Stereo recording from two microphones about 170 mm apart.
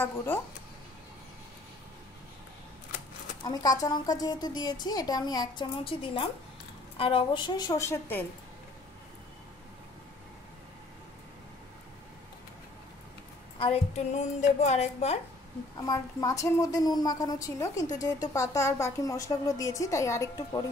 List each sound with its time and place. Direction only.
0.0 s speech: 10° left (ahead or behind)
3.4 s speech: 20° left (ahead or behind)
13.6 s a woman's voice: 35° left (ahead or behind)
15.8 s speech: 20° left (ahead or behind)